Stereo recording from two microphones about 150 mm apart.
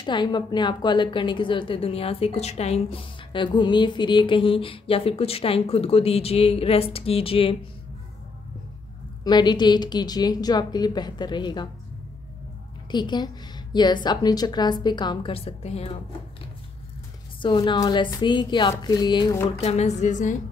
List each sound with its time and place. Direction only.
0.0 s a woman's voice: 30° left (ahead or behind)
9.2 s a woman's voice: 30° left (ahead or behind)
12.9 s a woman's voice: 30° left (ahead or behind)
17.4 s a woman's voice: 30° left (ahead or behind)
19.6 s a sound: 45° left (ahead or behind)